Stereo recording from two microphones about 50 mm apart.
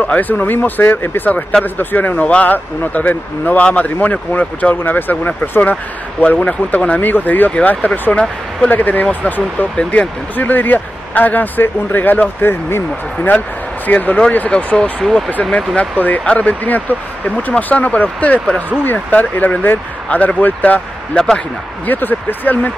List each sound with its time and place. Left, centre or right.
0.0 s speech: left
4.8 s speech: left
13.8 s speech: left
14.5 s speech: centre; by 22.7 s left